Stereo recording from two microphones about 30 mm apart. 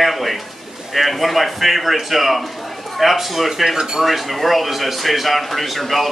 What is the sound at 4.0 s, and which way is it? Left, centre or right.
A man's voice, centre.